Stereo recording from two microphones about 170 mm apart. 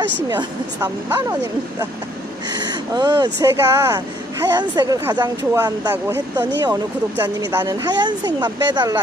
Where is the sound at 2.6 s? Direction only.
25° right (ahead or behind).